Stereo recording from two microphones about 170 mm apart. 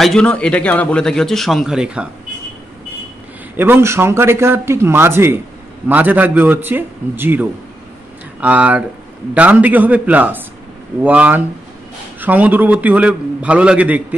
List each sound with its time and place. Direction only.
0.0 s a man's voice: 5° left (ahead or behind)
3.5 s a man's voice: 15° right (ahead or behind)